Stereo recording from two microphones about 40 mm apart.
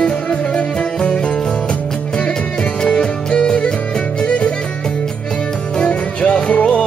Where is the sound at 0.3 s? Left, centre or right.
Left.